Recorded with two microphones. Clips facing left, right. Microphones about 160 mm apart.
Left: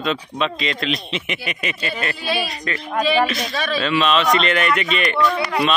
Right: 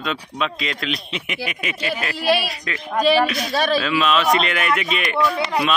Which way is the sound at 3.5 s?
35° right (ahead or behind).